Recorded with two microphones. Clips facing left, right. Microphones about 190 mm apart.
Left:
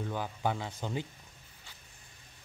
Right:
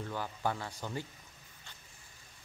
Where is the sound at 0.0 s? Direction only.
15° left (ahead or behind).